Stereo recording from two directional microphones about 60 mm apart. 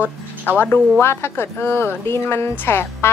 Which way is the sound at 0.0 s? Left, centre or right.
Left.